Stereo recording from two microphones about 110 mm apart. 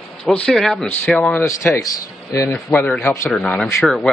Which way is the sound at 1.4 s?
30° left (ahead or behind).